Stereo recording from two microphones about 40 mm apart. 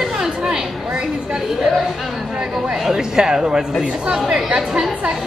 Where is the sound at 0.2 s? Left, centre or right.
Centre.